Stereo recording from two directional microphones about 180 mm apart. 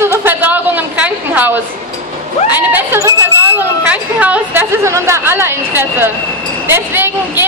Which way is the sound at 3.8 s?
10° right (ahead or behind).